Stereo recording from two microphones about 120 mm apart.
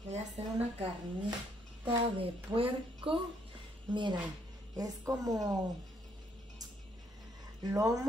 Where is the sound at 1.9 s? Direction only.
50° right (ahead or behind).